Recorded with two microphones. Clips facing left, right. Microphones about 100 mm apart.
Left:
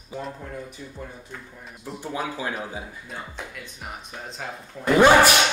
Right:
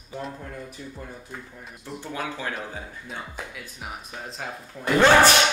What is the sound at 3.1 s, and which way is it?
Speech, centre (ahead or behind).